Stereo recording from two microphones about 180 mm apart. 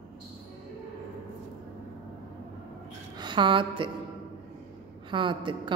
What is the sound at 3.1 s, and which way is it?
Speech, 25° right (ahead or behind).